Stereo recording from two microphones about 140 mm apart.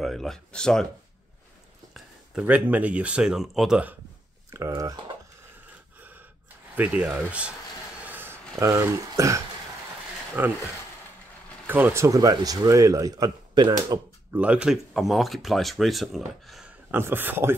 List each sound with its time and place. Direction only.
0.0 s speech: centre (ahead or behind)
2.0 s speech: 5° right (ahead or behind)
4.5 s speech: 20° right (ahead or behind)
5.9 s gasp: 15° right (ahead or behind)
6.7 s speech: 10° right (ahead or behind)
8.0 s a sound: 15° right (ahead or behind)
10.4 s speech: 15° right (ahead or behind)
11.6 s speech: 15° right (ahead or behind); by 13.7 s 30° right (ahead or behind)
14.3 s speech: 10° right (ahead or behind)
16.9 s speech: 15° right (ahead or behind)